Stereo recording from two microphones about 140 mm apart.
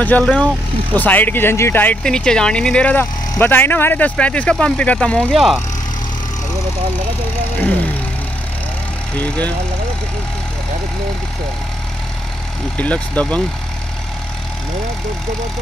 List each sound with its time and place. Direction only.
0.0 s speech: 10° left (ahead or behind)
9.2 s speech: 10° left (ahead or behind)
12.7 s speech: 10° left (ahead or behind)